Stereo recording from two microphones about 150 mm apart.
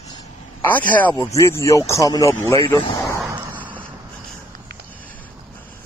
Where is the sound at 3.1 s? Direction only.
25° right (ahead or behind).